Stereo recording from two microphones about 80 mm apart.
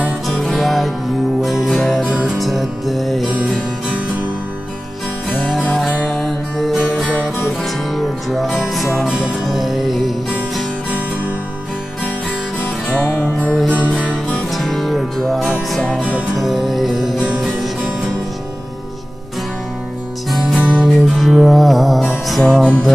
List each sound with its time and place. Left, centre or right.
0.3 s music: centre
5.3 s music: centre
5.9 s music: centre
6.8 s music: centre
7.6 s music: centre
12.8 s music: centre
14.0 s music: centre
20.2 s music: centre
22.4 s music: centre